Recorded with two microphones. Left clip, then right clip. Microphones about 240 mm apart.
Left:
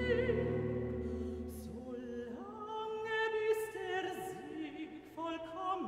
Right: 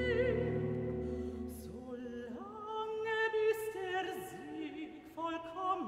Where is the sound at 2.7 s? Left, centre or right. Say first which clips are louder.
Right 1 dB; centre.